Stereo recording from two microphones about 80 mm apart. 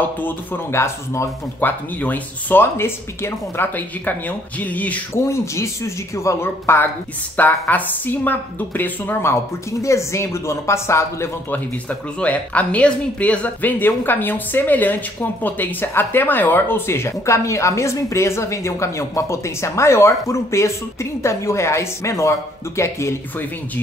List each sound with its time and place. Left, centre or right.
0.0 s speech: left
0.7 s speech: left
1.6 s speech: left
3.7 s speech: left
5.1 s speech: left
11.5 s speech: centre; by 23.1 s left